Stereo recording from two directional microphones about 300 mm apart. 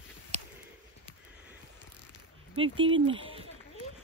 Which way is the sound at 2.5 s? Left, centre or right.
Centre.